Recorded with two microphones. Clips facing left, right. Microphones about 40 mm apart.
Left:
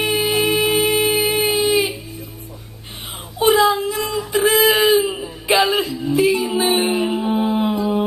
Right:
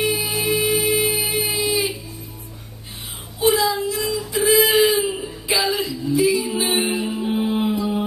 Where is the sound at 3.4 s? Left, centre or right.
Left.